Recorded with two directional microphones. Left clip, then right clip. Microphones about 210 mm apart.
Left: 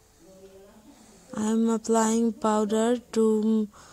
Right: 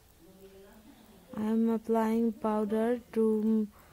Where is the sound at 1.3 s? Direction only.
25° left (ahead or behind).